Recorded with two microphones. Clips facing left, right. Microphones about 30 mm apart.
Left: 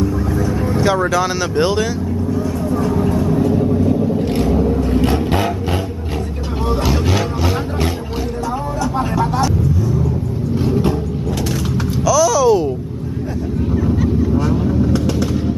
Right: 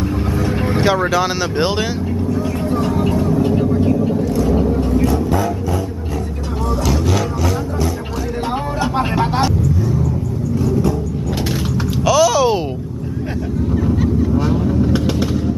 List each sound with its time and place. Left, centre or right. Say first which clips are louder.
0.0 s vehicle: left 1 dB; right
1.1 s speech: even; centre
3.0 s vehicle: even; right
4.2 s vehicle: even; left
6.9 s a sound: even; left
8.9 s vehicle: right 1 dB; right
10.5 s vehicle: left 1 dB; left
12.0 s a sound: even; right
13.7 s a sound: even; centre
14.9 s vehicle: even; centre